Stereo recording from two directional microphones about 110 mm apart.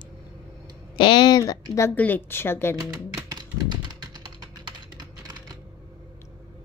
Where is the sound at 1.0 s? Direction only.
45° left (ahead or behind).